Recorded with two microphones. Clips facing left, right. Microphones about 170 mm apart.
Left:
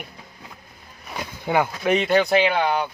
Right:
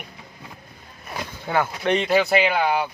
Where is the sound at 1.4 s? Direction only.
15° left (ahead or behind).